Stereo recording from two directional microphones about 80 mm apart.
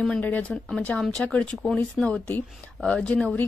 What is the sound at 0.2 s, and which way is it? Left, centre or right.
A woman's voice, centre.